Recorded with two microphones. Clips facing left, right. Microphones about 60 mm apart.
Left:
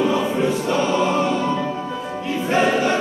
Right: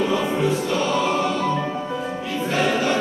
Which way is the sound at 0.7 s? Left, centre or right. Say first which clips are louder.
Left 2 dB; left.